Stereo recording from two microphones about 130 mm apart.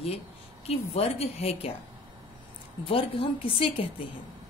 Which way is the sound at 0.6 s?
50° left (ahead or behind).